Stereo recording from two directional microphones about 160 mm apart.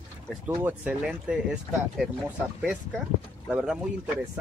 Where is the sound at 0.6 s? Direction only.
10° right (ahead or behind).